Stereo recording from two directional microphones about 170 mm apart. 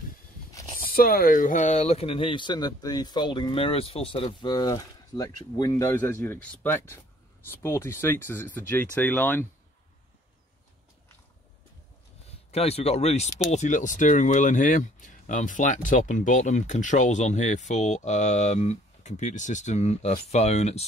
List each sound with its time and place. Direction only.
0.7 s speech: 60° left (ahead or behind); by 9.5 s 10° left (ahead or behind)
12.4 s speech: 35° left (ahead or behind)